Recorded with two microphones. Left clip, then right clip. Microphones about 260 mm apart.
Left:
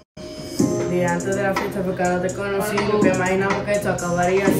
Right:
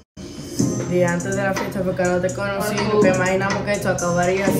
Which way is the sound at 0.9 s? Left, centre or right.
Centre.